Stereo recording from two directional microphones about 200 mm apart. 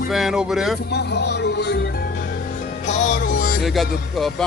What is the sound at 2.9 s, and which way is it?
Music, 40° left (ahead or behind).